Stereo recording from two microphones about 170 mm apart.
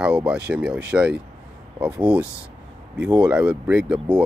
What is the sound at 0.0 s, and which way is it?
Speech, 5° right (ahead or behind).